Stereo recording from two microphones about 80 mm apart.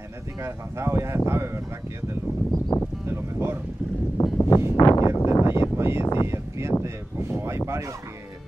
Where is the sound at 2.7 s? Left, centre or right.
Left.